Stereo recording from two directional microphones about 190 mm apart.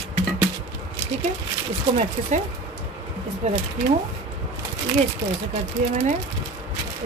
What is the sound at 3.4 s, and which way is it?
Speech, 35° right (ahead or behind).